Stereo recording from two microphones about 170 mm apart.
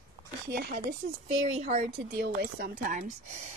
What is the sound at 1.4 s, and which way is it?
Speech, 40° right (ahead or behind).